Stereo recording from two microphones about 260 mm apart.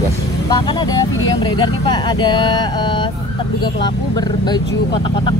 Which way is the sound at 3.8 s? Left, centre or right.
Centre.